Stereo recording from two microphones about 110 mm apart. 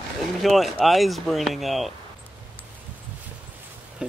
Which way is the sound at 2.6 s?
15° left (ahead or behind).